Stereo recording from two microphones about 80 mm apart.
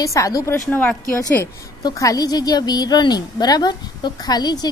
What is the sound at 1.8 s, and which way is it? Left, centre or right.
A woman's voice, left.